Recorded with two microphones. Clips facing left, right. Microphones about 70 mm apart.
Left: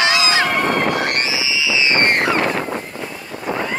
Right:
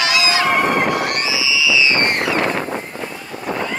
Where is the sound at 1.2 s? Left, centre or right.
Left.